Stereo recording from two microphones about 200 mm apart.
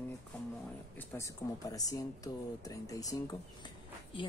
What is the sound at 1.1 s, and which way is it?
Speech, 15° left (ahead or behind).